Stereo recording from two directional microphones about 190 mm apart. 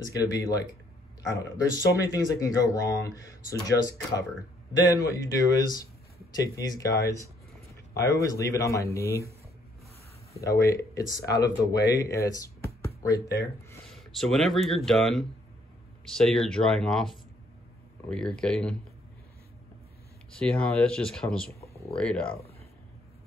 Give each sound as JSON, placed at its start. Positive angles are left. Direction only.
{"t": 0.0, "sound": "a man's voice", "side_deg": 20}
{"t": 10.4, "sound": "speech", "side_deg": 15}
{"t": 13.8, "sound": "speech", "side_deg": 0}
{"t": 20.3, "sound": "speech", "side_deg": 5}